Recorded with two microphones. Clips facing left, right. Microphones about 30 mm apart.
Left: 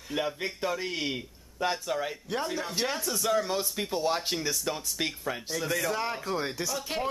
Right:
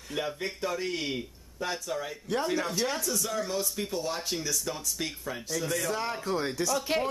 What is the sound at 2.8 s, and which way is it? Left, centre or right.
Speech, centre.